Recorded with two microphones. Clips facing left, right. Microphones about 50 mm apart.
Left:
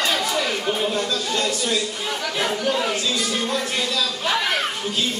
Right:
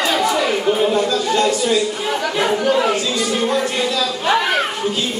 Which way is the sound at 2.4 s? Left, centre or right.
Centre.